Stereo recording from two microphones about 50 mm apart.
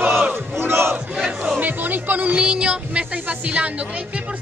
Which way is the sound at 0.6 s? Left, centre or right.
Right.